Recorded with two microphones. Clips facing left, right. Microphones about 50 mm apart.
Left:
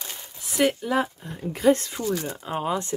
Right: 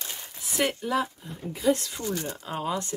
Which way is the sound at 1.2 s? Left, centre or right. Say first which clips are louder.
Left 6 dB; left.